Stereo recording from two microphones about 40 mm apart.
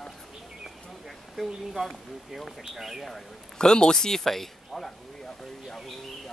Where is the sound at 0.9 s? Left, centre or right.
Centre.